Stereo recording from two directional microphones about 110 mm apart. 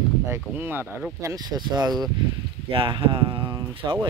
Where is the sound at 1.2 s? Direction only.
35° right (ahead or behind).